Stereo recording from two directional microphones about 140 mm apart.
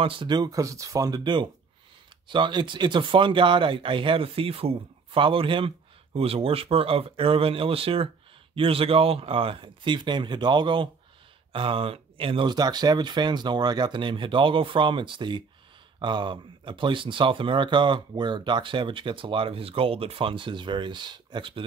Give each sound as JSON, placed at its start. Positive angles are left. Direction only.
{"t": 0.0, "sound": "speech", "side_deg": -35}